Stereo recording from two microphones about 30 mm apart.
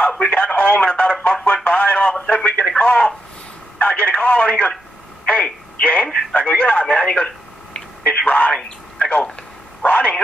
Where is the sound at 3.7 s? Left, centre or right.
Left.